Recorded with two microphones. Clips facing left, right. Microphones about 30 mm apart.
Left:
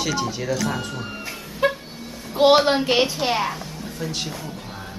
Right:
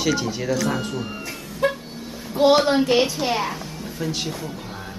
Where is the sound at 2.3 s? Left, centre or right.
Left.